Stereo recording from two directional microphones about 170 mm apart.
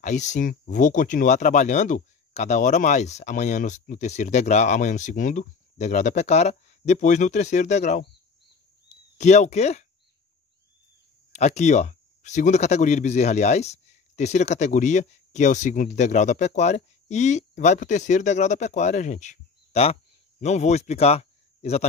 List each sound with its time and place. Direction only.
0.0 s speech: 45° left (ahead or behind)
8.8 s a sound: 45° left (ahead or behind)
11.3 s speech: 40° left (ahead or behind)